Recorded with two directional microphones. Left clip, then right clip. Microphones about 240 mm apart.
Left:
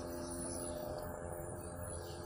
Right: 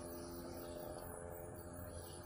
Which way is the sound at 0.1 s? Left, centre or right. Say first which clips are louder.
Left 6 dB; right.